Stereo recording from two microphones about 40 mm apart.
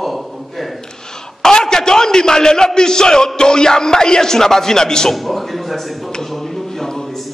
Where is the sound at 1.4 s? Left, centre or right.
Centre.